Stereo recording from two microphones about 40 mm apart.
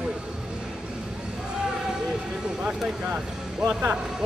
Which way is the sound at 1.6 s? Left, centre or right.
Centre.